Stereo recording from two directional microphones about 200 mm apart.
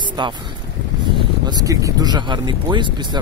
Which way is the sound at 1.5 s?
15° right (ahead or behind).